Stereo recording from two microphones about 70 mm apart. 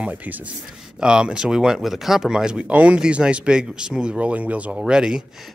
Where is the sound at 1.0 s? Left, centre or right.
Centre.